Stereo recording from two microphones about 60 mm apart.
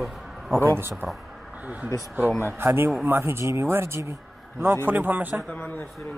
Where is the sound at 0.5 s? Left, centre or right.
Right.